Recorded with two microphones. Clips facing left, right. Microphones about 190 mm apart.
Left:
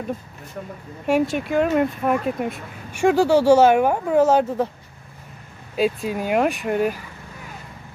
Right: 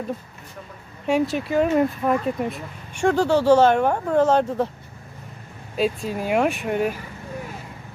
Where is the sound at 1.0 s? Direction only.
Centre (ahead or behind).